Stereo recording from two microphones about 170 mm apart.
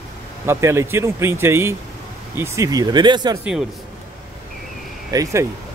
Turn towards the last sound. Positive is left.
turn(degrees=-20)  # may be behind; listen again after turning